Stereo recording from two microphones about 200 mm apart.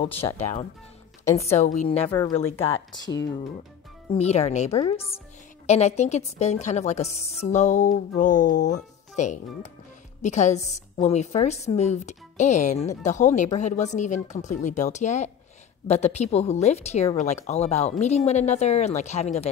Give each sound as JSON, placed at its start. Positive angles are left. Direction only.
{"t": 0.2, "sound": "speech", "side_deg": 20}
{"t": 1.4, "sound": "speech", "side_deg": 35}
{"t": 2.0, "sound": "speech", "side_deg": 10}
{"t": 2.5, "sound": "speech", "side_deg": 30}
{"t": 4.1, "sound": "speech", "side_deg": 30}